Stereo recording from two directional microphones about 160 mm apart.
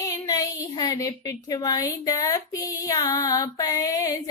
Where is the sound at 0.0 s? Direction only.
20° left (ahead or behind).